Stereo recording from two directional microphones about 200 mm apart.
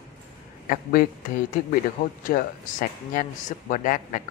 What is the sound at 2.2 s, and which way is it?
A man's voice, 45° left (ahead or behind).